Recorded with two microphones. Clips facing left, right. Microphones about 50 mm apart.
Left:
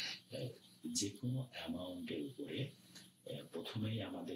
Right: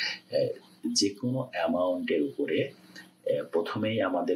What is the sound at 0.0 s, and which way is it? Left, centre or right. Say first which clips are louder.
Speech: right 18 dB; right.